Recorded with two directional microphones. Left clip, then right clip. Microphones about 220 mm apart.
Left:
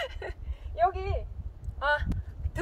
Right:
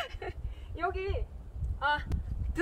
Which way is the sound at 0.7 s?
30° left (ahead or behind).